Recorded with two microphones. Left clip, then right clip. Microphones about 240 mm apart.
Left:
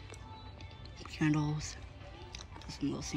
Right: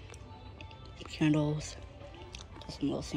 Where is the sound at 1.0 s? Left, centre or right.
Left.